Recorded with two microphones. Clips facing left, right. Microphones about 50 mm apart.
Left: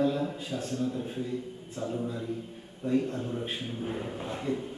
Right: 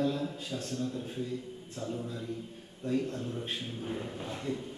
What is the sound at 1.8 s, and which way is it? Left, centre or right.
Speech, left.